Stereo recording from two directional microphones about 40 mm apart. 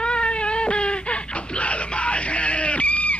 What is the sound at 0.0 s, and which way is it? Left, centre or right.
Wail, left.